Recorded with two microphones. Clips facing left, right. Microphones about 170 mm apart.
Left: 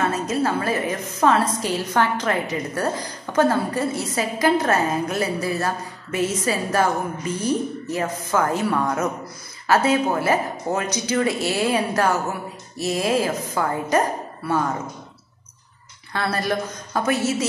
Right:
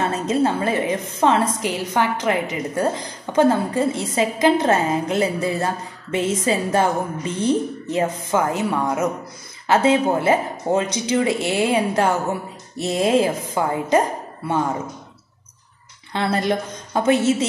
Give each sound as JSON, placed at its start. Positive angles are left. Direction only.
{"t": 0.1, "sound": "a woman's voice", "side_deg": -25}
{"t": 16.1, "sound": "a woman's voice", "side_deg": -20}